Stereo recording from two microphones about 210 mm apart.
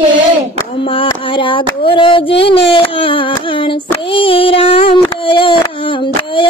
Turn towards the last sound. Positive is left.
turn(degrees=25)  # may be behind; listen again after turning